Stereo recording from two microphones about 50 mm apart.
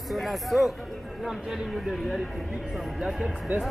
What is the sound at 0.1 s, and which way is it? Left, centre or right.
Speech, centre.